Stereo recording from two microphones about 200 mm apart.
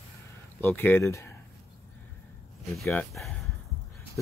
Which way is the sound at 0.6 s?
10° left (ahead or behind).